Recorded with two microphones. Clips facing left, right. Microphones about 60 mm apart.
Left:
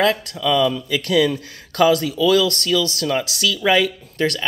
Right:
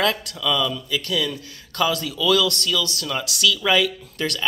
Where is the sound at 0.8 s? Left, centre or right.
Left.